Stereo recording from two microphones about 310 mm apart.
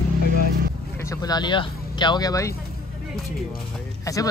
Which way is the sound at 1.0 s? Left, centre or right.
Centre.